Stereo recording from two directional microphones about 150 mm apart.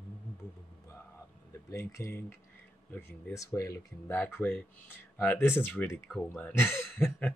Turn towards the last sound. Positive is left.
turn(degrees=10)  # may be behind; listen again after turning